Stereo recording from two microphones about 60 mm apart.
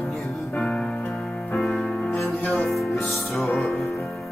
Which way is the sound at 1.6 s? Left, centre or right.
Centre.